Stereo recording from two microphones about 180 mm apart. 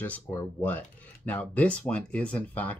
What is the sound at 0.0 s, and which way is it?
Speech, 10° left (ahead or behind).